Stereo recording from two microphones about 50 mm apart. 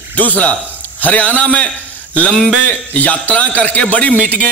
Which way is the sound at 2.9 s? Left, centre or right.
Left.